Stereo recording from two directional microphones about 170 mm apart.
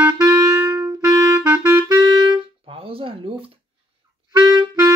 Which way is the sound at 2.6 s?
35° right (ahead or behind).